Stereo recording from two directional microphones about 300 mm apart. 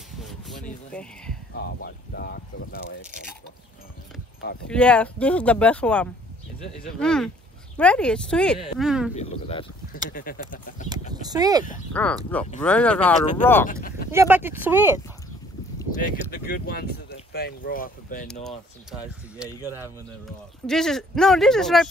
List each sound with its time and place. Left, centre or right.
0.2 s a sound: centre
1.5 s speech: left
4.6 s speech: centre
9.1 s speech: centre
10.9 s speech: centre
11.9 s speech: centre
13.7 s speech: left
14.1 s speech: centre
15.9 s speech: left
18.2 s speech: centre